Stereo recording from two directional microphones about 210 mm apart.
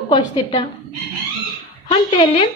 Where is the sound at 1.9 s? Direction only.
25° left (ahead or behind).